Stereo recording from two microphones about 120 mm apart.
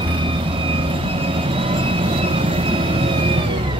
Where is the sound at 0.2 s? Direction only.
45° right (ahead or behind).